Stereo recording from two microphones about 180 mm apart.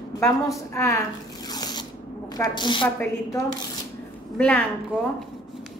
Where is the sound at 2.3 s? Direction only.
25° left (ahead or behind).